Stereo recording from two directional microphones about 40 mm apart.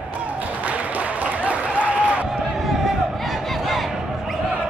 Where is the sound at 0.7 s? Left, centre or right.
Right.